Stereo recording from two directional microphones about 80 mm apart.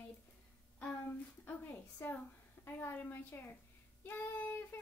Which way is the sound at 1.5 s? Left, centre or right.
Left.